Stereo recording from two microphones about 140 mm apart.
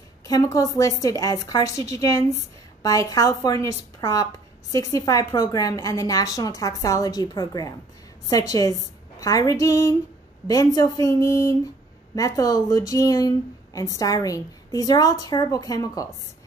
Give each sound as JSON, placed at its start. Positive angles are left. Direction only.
{"t": 0.3, "sound": "a woman's voice", "side_deg": 25}